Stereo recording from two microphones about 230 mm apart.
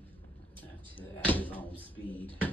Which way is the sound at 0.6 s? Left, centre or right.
Centre.